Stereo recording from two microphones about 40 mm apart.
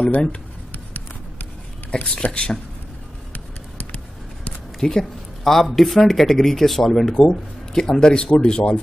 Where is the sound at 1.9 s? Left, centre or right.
Left.